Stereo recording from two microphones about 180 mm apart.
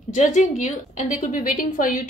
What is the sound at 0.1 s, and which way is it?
A woman's voice, 45° left (ahead or behind).